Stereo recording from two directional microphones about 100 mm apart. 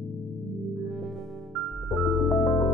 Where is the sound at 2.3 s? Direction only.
45° left (ahead or behind).